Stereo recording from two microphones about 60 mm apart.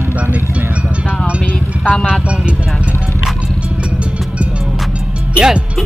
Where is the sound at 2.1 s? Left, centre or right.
Centre.